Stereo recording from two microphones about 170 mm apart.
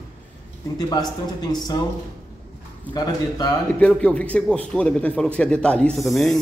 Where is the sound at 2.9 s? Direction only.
25° left (ahead or behind).